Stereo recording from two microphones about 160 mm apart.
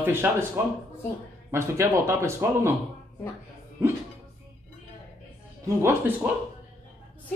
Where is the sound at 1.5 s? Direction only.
15° right (ahead or behind).